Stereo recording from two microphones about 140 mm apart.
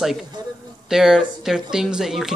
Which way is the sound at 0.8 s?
5° right (ahead or behind).